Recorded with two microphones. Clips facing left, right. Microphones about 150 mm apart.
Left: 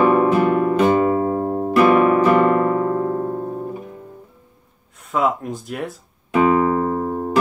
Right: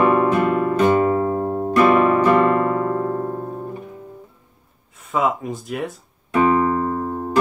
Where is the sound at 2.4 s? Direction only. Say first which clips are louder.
Left 1 dB; 20° left (ahead or behind); by 3.8 s 5° left (ahead or behind).